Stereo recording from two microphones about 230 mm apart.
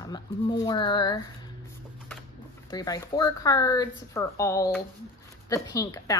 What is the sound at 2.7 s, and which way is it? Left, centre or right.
A woman's voice, centre.